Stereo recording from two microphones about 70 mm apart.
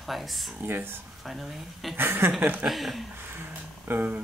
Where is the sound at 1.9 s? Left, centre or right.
Right.